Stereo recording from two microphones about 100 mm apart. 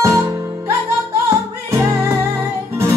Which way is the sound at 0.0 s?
30° right (ahead or behind).